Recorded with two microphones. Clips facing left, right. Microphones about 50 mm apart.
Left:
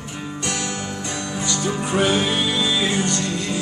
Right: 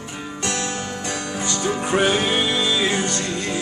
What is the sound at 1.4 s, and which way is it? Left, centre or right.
Music, right.